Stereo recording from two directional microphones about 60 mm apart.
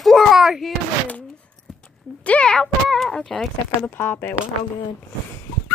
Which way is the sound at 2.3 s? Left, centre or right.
Centre.